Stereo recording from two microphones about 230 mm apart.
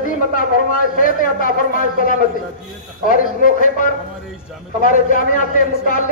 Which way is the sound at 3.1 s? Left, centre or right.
Left.